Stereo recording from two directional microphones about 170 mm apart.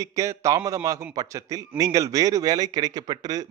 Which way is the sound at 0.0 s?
20° right (ahead or behind).